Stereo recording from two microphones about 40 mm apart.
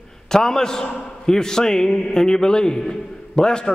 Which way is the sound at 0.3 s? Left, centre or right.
Centre.